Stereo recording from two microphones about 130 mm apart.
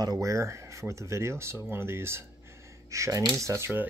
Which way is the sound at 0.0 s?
25° right (ahead or behind).